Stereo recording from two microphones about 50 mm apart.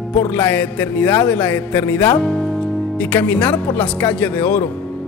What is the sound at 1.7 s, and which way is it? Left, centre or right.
Music, left.